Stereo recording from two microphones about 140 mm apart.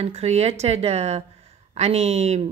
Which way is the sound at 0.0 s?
50° right (ahead or behind).